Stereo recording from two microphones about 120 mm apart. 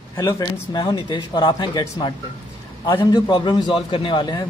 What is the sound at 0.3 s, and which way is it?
Speech, 40° left (ahead or behind).